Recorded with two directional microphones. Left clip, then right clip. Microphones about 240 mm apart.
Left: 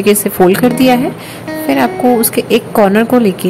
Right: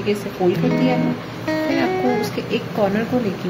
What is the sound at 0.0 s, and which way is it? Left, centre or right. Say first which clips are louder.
Speech: left 11 dB; left.